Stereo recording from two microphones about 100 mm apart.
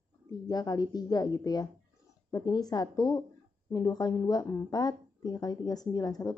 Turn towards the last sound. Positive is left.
turn(degrees=40)  # may be behind; listen again after turning